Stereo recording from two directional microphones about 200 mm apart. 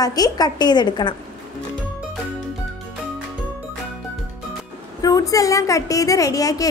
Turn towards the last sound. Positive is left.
turn(degrees=15)  # may be behind; listen again after turning